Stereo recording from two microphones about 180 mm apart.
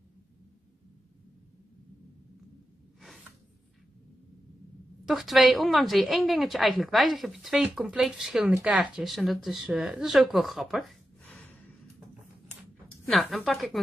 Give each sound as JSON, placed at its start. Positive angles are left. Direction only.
{"t": 5.0, "sound": "a woman's voice", "side_deg": 0}
{"t": 13.0, "sound": "a woman's voice", "side_deg": 0}